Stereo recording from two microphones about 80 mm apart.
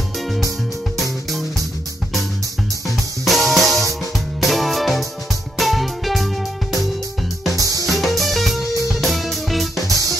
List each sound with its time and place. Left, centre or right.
0.2 s music: centre
3.3 s music: centre
7.5 s music: right
7.8 s music: centre